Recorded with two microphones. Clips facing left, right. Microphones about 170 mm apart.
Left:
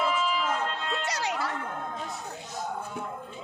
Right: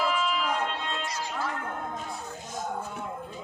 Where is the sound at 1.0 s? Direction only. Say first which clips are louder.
Left 2 dB; 75° left (ahead or behind).